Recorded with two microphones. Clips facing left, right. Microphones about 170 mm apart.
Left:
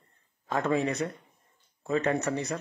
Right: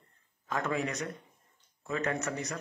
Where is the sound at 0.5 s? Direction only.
30° left (ahead or behind).